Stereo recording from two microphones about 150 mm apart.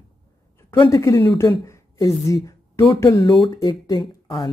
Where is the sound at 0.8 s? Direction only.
20° left (ahead or behind).